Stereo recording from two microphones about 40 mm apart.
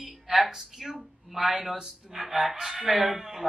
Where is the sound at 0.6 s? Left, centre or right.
Centre.